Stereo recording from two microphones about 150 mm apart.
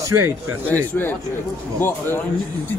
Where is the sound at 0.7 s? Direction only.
15° left (ahead or behind).